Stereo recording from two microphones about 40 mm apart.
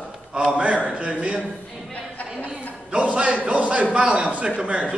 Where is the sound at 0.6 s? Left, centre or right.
Right.